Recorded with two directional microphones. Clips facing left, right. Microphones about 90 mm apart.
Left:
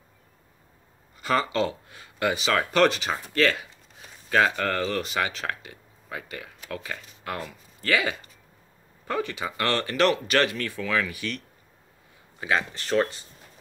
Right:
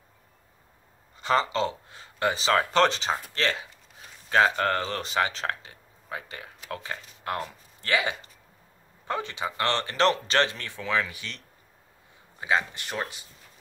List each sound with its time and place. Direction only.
1.2 s speech: 25° right (ahead or behind)